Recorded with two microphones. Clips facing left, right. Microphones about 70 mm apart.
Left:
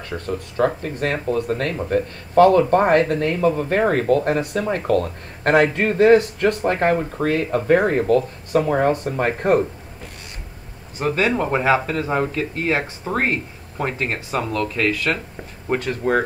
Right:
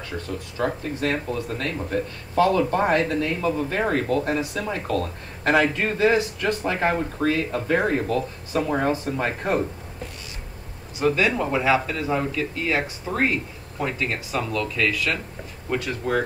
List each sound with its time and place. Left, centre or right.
0.3 s speech: left
11.0 s speech: left